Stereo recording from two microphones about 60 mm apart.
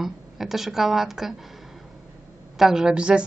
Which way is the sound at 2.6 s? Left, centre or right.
Centre.